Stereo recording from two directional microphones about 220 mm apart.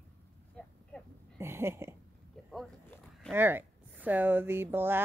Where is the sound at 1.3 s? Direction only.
10° right (ahead or behind).